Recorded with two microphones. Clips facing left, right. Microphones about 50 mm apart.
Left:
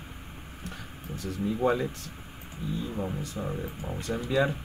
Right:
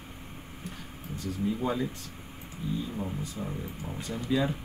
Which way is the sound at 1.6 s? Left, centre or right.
Left.